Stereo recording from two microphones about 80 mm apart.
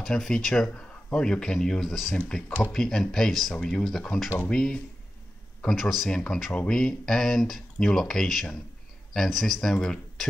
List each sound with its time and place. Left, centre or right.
0.0 s speech: centre